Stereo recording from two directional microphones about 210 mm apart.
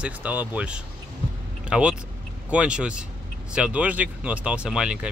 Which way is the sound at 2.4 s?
5° right (ahead or behind).